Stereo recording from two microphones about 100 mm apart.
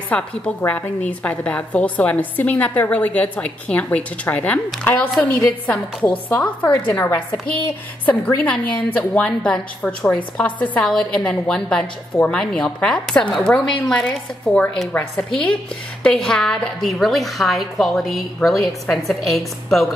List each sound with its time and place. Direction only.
0.1 s a woman's voice: 15° left (ahead or behind)